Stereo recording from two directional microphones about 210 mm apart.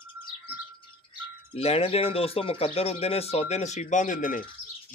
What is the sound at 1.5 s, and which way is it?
Speech, 30° left (ahead or behind).